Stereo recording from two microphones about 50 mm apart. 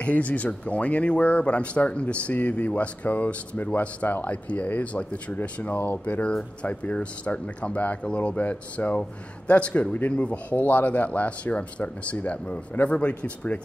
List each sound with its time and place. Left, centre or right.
0.0 s speech: left